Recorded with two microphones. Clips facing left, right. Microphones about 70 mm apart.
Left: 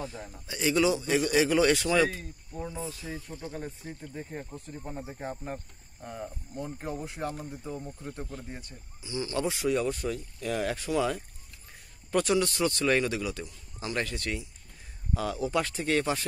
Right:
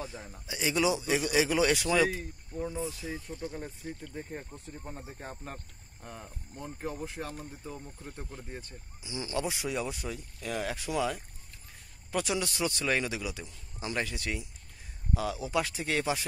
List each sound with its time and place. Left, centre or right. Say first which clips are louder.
0.0 s a man's voice: left 2 dB; centre
2.9 s a man's voice: even; centre
4.1 s speech: left 2 dB; centre
5.0 s speech: left 5 dB; centre
8.2 s a man's voice: left 2 dB; centre
9.0 s a man's voice: left 5 dB; centre
9.3 s a man's voice: left 5 dB; centre